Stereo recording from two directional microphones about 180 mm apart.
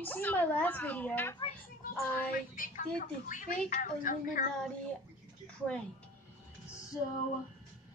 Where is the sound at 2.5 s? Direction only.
50° left (ahead or behind).